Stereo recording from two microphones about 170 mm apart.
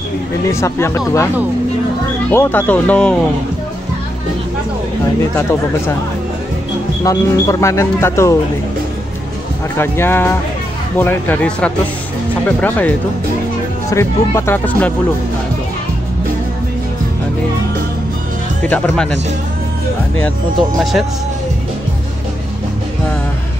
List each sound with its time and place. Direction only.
0.5 s speech: 15° left (ahead or behind)
2.3 s speech: 10° left (ahead or behind)
5.3 s speech: 15° left (ahead or behind)
7.0 s speech: 20° left (ahead or behind)
9.8 s speech: 15° left (ahead or behind)
18.6 s speech: 5° left (ahead or behind)